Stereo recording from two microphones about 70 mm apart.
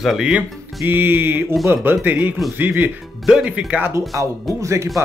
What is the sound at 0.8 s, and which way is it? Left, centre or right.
Music, right.